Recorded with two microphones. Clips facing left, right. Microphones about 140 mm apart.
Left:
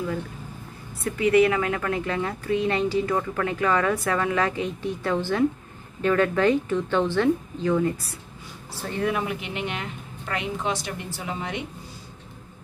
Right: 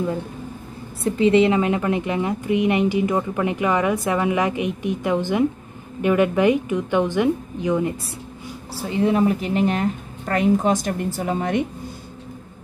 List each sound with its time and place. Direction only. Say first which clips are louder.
1.0 s a woman's voice: right 3 dB; 25° right (ahead or behind)
9.0 s a woman's voice: right 8 dB; 35° right (ahead or behind)